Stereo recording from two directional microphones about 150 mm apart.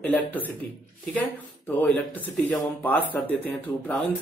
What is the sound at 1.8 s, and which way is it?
Speech, 10° left (ahead or behind).